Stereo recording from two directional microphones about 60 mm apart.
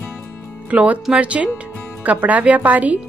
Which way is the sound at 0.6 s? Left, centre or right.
Right.